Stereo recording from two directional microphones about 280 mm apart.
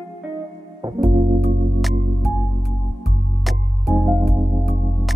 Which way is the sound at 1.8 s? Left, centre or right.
Centre.